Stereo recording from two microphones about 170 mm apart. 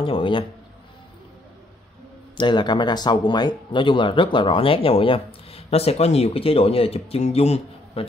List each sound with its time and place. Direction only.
0.0 s a man's voice: 30° left (ahead or behind)
2.3 s speech: 25° left (ahead or behind)